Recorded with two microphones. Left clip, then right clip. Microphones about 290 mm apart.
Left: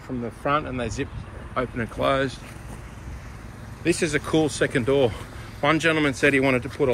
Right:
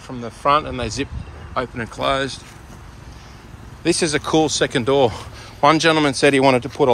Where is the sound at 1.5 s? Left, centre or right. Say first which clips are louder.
Right 3 dB; centre.